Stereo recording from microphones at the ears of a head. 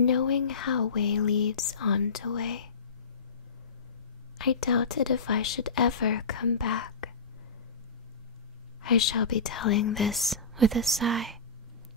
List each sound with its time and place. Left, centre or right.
0.0 s speech: left
4.4 s speech: left
8.8 s speech: left
10.6 s speech: right